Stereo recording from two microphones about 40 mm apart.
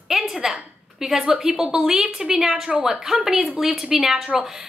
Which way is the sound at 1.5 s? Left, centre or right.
Right.